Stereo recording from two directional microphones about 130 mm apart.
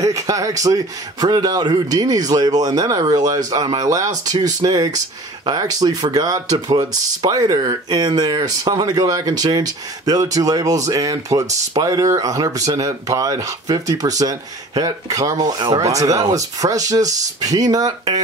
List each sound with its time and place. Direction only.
0.0 s speech: 25° right (ahead or behind)